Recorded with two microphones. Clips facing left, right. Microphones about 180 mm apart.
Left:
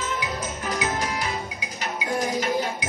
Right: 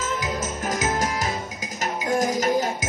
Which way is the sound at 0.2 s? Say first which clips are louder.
Right 2 dB; 45° right (ahead or behind).